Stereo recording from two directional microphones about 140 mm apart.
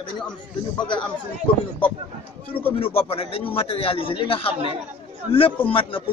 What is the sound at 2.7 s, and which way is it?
A man's voice, 45° left (ahead or behind).